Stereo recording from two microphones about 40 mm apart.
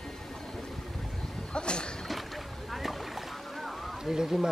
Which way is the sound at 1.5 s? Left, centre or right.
Left.